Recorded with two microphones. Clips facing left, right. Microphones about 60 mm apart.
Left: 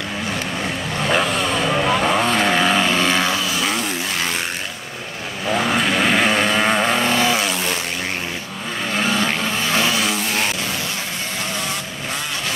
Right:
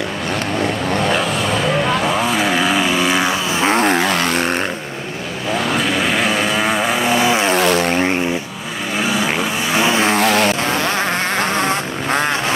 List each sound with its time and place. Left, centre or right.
1.1 s vehicle: centre
3.5 s vehicle: right
3.8 s vehicle: right
5.5 s vehicle: centre
7.5 s a sound: right
8.9 s vehicle: centre
10.2 s a sound: right
11.3 s vehicle: right